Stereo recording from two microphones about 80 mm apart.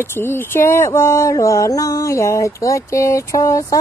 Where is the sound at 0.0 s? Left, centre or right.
Left.